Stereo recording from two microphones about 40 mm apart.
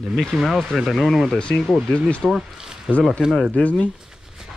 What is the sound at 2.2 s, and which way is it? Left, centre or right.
Speech, centre.